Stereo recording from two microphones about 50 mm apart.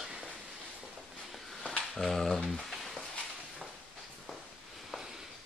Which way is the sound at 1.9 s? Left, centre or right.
Centre.